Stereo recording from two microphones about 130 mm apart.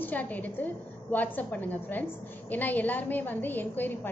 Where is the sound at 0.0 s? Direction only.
10° left (ahead or behind).